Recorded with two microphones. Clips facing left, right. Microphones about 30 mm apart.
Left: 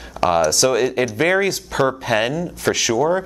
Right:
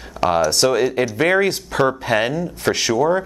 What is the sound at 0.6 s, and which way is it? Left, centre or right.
Speech, centre.